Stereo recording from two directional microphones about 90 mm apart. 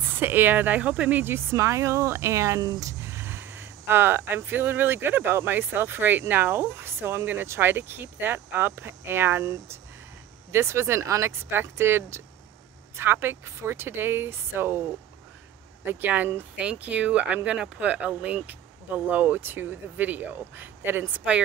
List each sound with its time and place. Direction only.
0.0 s speech: 25° right (ahead or behind)
1.2 s speech: 30° right (ahead or behind)